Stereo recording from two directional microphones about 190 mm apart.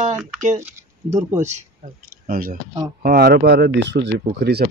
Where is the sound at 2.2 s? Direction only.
45° right (ahead or behind).